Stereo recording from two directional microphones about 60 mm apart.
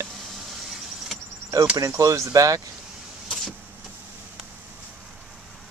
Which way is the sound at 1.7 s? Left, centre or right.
Right.